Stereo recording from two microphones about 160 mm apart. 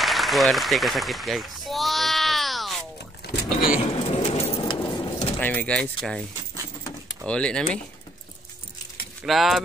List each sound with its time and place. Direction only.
0.0 s a sound: centre (ahead or behind)
3.2 s a sound: 90° left
3.8 s pigeon: 35° left (ahead or behind)
5.4 s speech: 10° left (ahead or behind)
7.2 s speech: 5° left (ahead or behind)
9.2 s speech: centre (ahead or behind)